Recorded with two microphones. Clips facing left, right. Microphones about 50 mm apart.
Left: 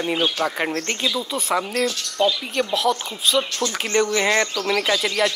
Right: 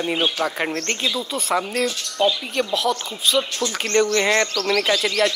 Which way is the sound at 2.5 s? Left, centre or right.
Centre.